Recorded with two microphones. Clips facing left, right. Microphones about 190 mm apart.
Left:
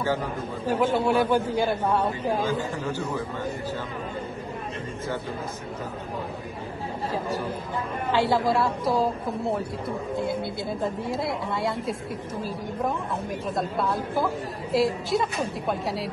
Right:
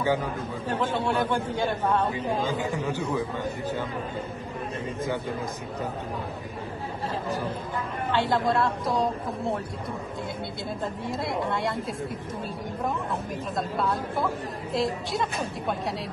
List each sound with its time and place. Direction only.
0.0 s a man's voice: 10° right (ahead or behind)
0.7 s a man's voice: 10° left (ahead or behind)
2.9 s a man's voice: 10° right (ahead or behind)
7.2 s a man's voice: 10° left (ahead or behind)
10.8 s a woman's voice: centre (ahead or behind)
13.6 s a woman's voice: 5° left (ahead or behind)